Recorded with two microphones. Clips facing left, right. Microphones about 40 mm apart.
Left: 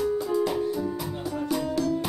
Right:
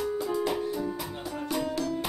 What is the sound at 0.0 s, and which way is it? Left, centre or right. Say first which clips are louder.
Music: left 4 dB; right.